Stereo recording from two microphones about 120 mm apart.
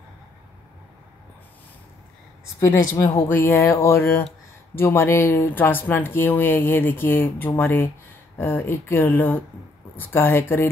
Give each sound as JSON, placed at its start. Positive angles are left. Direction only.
{"t": 3.2, "sound": "speech", "side_deg": 15}